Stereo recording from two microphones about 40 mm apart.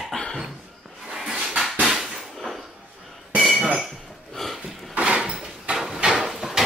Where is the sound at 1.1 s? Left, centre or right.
Centre.